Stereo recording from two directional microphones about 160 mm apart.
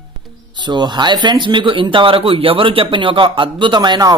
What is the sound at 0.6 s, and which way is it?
Speech, 30° right (ahead or behind).